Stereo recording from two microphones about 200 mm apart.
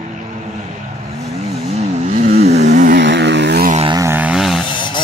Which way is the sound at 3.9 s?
15° right (ahead or behind).